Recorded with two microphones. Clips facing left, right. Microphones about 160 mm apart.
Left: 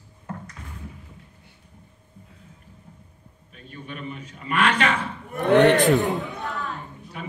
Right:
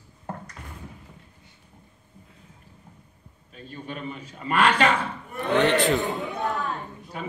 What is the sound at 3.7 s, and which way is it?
A man's voice, 35° right (ahead or behind).